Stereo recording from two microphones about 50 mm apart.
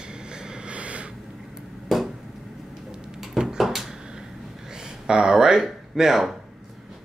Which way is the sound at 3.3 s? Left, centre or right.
Centre.